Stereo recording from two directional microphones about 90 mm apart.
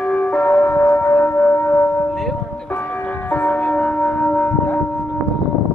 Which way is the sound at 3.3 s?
20° left (ahead or behind).